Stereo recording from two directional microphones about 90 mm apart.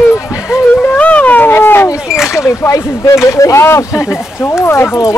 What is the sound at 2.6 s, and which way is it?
Speech, 35° left (ahead or behind).